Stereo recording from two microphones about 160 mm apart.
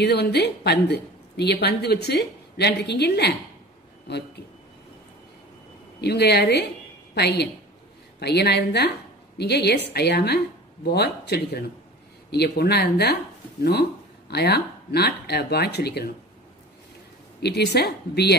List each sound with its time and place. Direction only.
0.0 s a woman's voice: 90° left
5.9 s a woman's voice: 90° left
14.3 s a woman's voice: 90° left
17.4 s a woman's voice: 90° left